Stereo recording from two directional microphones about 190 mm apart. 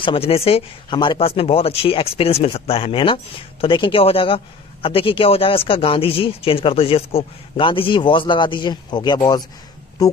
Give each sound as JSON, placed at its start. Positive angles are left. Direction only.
{"t": 0.0, "sound": "speech", "side_deg": 30}